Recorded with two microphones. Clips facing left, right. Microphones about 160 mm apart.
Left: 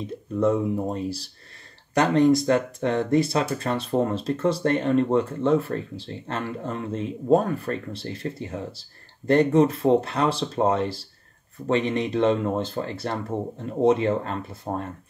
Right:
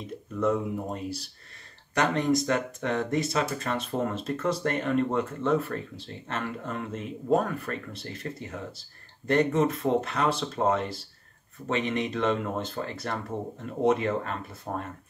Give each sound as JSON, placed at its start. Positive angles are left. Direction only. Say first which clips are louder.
{"t": 2.0, "sound": "speech", "louder": "left 6 dB", "side_deg": 35}